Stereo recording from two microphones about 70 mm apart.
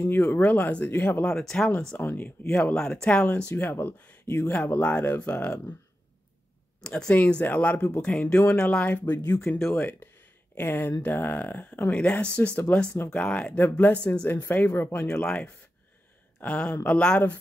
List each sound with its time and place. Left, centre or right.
0.0 s speech: left
1.2 s speech: centre
2.0 s speech: left
2.7 s speech: centre
6.8 s speech: centre
13.6 s speech: left
14.3 s speech: left
15.0 s speech: centre